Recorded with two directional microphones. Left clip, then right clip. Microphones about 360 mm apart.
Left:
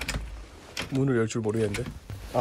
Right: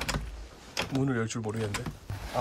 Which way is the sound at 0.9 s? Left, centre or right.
Centre.